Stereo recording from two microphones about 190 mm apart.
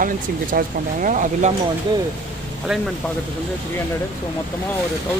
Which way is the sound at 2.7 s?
5° right (ahead or behind).